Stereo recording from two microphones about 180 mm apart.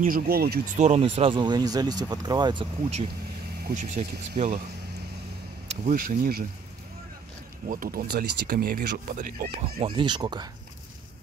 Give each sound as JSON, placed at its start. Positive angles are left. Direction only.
{"t": 0.0, "sound": "speech", "side_deg": -55}
{"t": 0.7, "sound": "speech", "side_deg": -35}
{"t": 3.6, "sound": "speech", "side_deg": -45}
{"t": 5.7, "sound": "speech", "side_deg": -45}
{"t": 7.6, "sound": "speech", "side_deg": -50}
{"t": 9.8, "sound": "speech", "side_deg": -25}